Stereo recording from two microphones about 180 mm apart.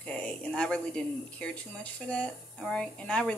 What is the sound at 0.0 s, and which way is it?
Speech, 5° left (ahead or behind).